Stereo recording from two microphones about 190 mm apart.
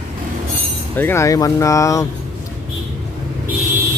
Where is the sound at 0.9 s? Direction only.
10° left (ahead or behind).